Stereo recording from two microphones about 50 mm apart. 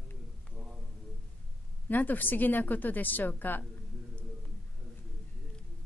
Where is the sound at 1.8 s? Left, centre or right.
Left.